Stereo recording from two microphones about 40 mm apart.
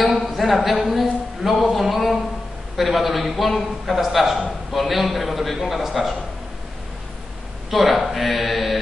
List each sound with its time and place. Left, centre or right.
0.0 s a sound: centre
0.7 s a man's voice: centre
7.7 s a man's voice: centre